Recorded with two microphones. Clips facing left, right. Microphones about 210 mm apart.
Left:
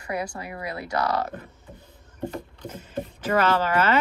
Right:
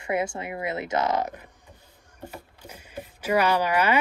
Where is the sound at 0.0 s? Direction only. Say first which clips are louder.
Right 3 dB; 25° right (ahead or behind).